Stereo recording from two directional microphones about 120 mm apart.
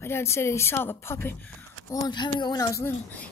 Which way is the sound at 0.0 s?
20° left (ahead or behind).